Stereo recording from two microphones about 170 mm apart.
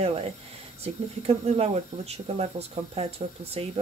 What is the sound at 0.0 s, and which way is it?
Speech, 35° right (ahead or behind).